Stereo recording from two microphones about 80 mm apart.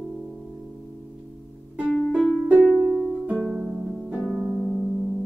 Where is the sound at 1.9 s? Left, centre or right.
Left.